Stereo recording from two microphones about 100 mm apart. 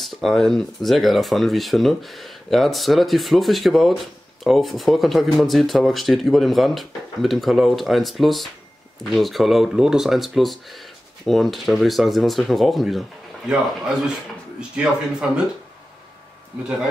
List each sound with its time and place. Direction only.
0.0 s speech: centre (ahead or behind)